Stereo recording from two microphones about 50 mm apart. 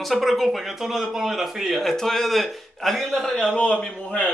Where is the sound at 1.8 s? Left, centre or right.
Centre.